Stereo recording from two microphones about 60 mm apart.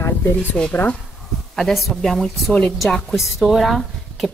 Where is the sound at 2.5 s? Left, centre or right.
Centre.